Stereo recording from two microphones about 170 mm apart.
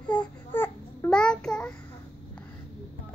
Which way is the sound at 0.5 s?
10° left (ahead or behind).